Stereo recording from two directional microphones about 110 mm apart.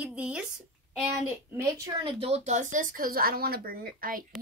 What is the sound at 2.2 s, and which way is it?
Speech, 80° right.